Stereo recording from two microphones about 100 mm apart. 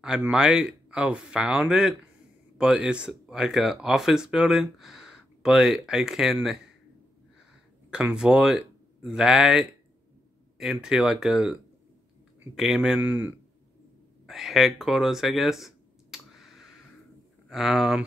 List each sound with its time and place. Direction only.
0.3 s speech: 5° right (ahead or behind)
7.9 s speech: 10° right (ahead or behind)
12.5 s speech: 5° right (ahead or behind)
13.0 s speech: 20° right (ahead or behind)
14.2 s a sound: 5° right (ahead or behind)
17.5 s speech: 5° right (ahead or behind)